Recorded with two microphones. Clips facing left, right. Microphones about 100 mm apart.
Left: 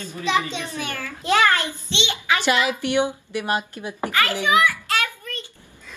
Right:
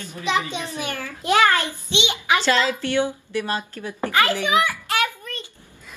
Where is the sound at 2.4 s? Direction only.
15° left (ahead or behind).